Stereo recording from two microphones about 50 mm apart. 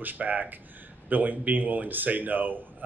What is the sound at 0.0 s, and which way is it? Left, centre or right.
A man's voice, right.